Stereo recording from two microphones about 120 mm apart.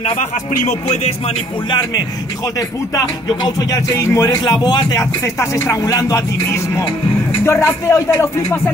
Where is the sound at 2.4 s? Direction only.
30° left (ahead or behind).